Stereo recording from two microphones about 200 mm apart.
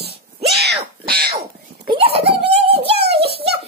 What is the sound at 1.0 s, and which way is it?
Speech, 50° right (ahead or behind).